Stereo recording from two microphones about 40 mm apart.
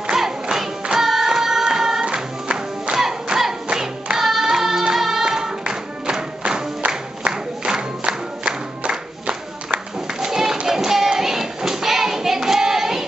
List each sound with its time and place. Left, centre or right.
0.1 s music: centre
2.9 s music: right
3.7 s singing: centre
5.6 s music: right
7.2 s music: right
10.2 s a sound: centre